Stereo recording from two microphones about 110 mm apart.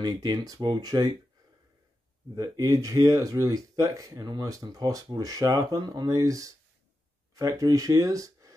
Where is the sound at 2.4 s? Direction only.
30° right (ahead or behind).